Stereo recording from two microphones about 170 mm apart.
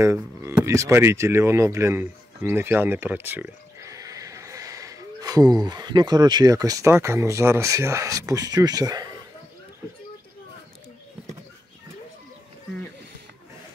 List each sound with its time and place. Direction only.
0.0 s speech: 15° right (ahead or behind)